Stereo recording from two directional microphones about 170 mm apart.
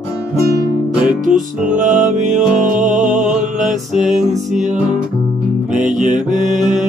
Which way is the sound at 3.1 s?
5° right (ahead or behind).